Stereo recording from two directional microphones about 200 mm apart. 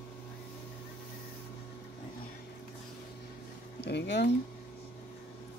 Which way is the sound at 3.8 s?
60° left (ahead or behind).